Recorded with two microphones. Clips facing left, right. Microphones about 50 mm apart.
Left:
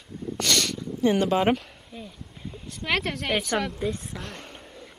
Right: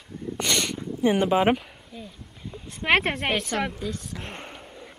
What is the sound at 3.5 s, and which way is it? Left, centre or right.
Speech, centre.